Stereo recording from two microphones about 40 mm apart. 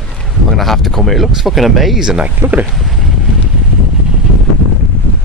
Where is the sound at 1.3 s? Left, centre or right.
Centre.